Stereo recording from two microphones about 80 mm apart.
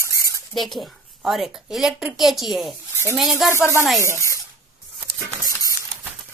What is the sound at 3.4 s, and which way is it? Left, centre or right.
Speech, centre.